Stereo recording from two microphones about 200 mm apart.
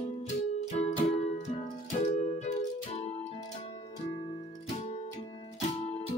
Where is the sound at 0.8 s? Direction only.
35° left (ahead or behind).